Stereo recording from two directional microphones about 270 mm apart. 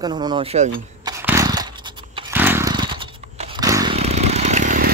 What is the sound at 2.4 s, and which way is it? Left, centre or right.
Chainsaw, centre.